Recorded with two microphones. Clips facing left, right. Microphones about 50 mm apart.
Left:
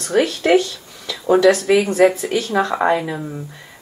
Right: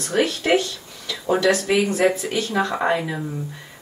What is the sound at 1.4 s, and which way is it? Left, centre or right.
Speech, centre.